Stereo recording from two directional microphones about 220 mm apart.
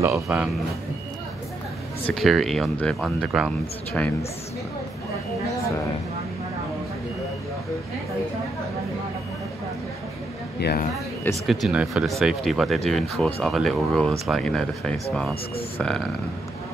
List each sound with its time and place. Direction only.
0.1 s speech: 5° right (ahead or behind)
2.0 s speech: centre (ahead or behind)
10.6 s speech: 45° left (ahead or behind)
11.4 s speech: centre (ahead or behind)